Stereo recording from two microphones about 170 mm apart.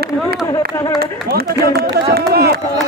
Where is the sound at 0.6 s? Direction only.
65° right (ahead or behind).